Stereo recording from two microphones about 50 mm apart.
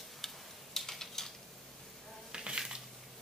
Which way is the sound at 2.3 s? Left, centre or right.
Centre.